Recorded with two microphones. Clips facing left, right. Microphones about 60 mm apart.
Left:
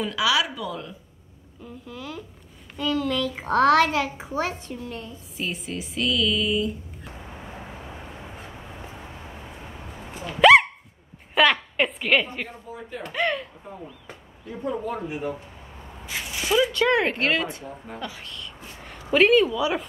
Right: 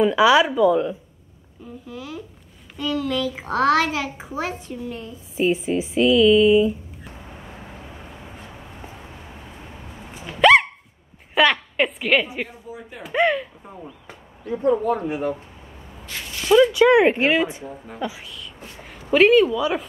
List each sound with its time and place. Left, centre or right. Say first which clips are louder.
0.0 s a woman's voice: right 8 dB; right
1.9 s a child's voice: right 2 dB; centre
5.5 s speech: right 10 dB; centre
10.1 s dog: even; centre
11.3 s a child's voice: right 2 dB; centre
15.0 s speech: right 5 dB; right
16.1 s a sound: right 6 dB; centre
16.7 s speech: right 7 dB; centre
17.6 s a child's voice: right 2 dB; centre
18.0 s a sound: right 9 dB; centre
19.1 s a child's voice: right 3 dB; centre